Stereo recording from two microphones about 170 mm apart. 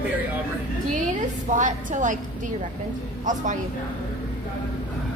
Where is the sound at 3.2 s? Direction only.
45° right (ahead or behind).